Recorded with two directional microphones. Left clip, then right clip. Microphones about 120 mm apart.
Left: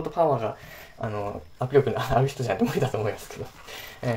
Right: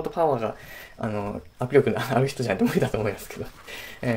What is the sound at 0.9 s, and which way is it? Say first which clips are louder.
Speech: right 1 dB; 40° right (ahead or behind).